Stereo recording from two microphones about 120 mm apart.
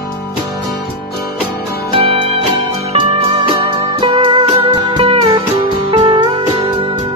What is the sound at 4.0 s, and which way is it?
Music, 40° right (ahead or behind).